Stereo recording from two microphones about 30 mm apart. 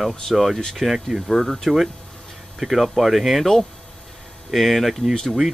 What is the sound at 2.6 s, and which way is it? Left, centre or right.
Speech, centre.